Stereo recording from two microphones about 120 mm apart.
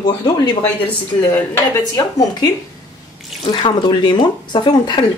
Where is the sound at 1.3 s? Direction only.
15° left (ahead or behind).